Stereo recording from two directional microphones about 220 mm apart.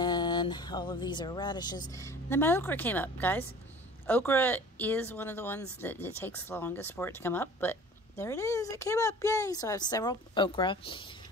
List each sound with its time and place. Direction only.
0.0 s speech: 20° left (ahead or behind)